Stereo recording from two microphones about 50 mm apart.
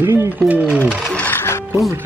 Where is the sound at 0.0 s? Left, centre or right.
Right.